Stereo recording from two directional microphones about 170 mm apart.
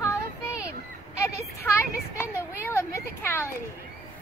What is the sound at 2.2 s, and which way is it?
A child's voice, 15° left (ahead or behind).